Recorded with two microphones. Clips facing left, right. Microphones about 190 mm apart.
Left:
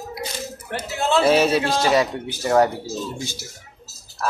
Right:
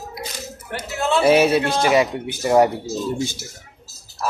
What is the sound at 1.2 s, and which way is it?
Speech, 10° right (ahead or behind).